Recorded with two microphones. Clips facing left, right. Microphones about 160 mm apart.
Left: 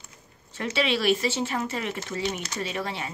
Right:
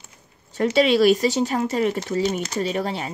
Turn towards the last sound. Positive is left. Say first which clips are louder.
# right 7 dB
turn(degrees=-35)  # may be behind; listen again after turning